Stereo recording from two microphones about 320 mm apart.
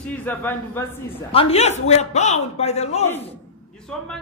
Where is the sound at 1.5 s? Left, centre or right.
Centre.